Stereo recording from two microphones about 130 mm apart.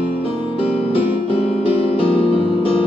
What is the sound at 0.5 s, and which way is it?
Music, 45° left (ahead or behind).